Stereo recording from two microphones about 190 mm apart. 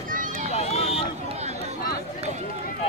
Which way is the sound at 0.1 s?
45° right (ahead or behind).